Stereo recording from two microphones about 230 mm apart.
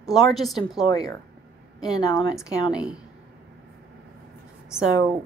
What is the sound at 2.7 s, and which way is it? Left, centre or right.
Speech, centre.